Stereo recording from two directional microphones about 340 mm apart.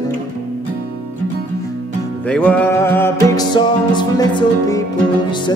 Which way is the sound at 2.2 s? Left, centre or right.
Centre.